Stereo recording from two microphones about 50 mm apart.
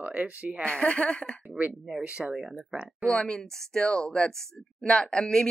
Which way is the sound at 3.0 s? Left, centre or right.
Centre.